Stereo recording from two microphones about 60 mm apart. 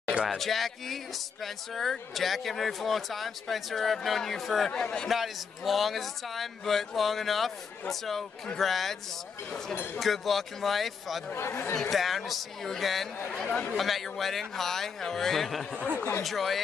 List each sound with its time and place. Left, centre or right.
0.1 s a sound: centre
0.4 s speech: centre
4.7 s speech: left
5.0 s speech: centre
9.9 s speech: centre
11.3 s speech: left
11.9 s speech: centre
13.5 s speech: left
13.7 s speech: centre